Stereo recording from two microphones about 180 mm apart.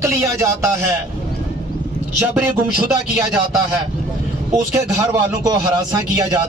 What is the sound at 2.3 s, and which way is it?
Speech, 10° right (ahead or behind).